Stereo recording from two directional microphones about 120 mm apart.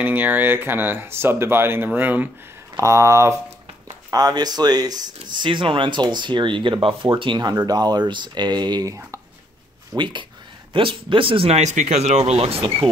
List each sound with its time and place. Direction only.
0.0 s speech: 15° right (ahead or behind)
2.7 s speech: 25° right (ahead or behind)
9.9 s speech: 40° right (ahead or behind)